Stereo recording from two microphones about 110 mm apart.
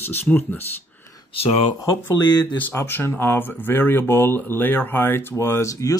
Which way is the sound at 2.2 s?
40° left (ahead or behind).